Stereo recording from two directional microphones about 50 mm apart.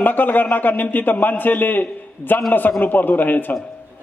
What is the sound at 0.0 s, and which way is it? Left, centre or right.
A man's voice, left.